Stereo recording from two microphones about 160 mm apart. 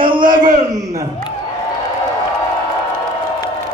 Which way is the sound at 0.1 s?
25° right (ahead or behind).